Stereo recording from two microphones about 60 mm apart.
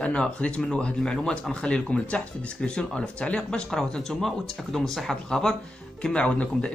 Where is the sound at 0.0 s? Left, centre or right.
Centre.